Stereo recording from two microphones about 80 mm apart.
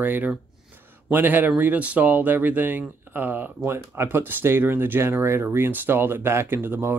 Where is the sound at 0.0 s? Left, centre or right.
Right.